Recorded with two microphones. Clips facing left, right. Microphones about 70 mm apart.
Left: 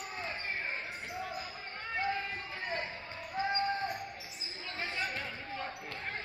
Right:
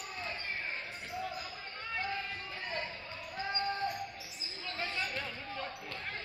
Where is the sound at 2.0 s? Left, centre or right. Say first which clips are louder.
Left 4 dB; centre.